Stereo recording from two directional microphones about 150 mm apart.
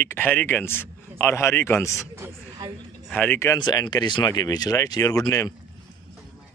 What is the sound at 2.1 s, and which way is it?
Speech, 15° right (ahead or behind).